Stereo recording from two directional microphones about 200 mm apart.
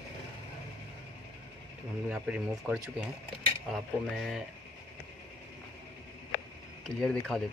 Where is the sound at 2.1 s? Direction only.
Centre (ahead or behind).